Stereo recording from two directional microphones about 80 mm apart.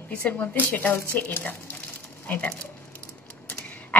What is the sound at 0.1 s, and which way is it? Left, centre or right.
A woman's voice, centre.